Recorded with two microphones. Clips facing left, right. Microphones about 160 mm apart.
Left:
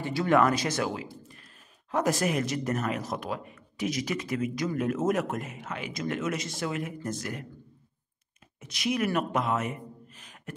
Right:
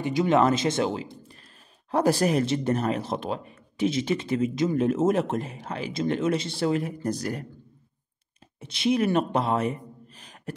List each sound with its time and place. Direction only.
0.0 s speech: 20° right (ahead or behind); by 7.4 s 35° right (ahead or behind)
8.5 s a man's voice: 30° right (ahead or behind)